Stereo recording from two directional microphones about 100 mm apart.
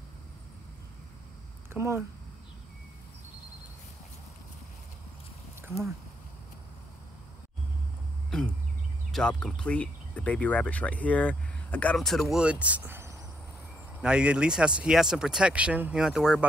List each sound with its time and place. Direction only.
1.7 s speech: 25° right (ahead or behind)
8.3 s a sound: 5° left (ahead or behind)
9.1 s speech: 10° left (ahead or behind)
12.1 s speech: centre (ahead or behind)
12.4 s speech: 15° right (ahead or behind)
14.0 s speech: 10° right (ahead or behind)